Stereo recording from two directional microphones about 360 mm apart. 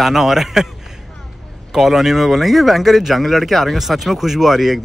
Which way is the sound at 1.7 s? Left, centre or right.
Centre.